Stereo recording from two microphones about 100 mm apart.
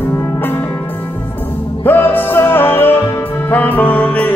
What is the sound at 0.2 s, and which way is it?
Music, 20° left (ahead or behind).